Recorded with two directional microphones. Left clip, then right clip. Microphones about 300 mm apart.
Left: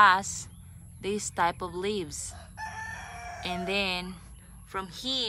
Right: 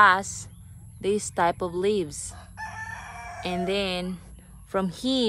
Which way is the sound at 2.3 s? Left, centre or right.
Right.